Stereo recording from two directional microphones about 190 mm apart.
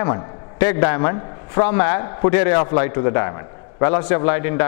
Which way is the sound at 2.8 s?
15° left (ahead or behind).